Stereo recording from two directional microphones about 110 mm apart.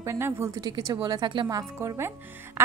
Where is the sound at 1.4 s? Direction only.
30° right (ahead or behind).